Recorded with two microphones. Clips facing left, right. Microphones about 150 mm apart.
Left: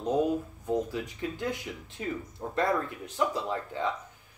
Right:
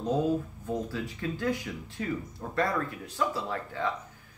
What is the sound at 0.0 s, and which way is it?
Speech, 20° left (ahead or behind).